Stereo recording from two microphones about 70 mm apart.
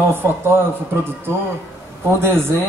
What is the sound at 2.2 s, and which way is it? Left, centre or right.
Speech, right.